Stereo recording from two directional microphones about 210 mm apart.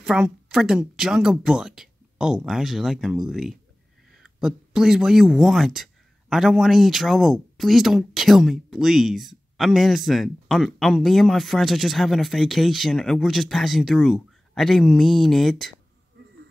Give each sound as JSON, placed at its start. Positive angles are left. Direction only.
{"t": 0.0, "sound": "speech", "side_deg": -5}